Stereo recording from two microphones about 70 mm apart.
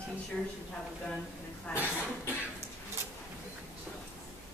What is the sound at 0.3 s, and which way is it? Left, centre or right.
Speech, centre.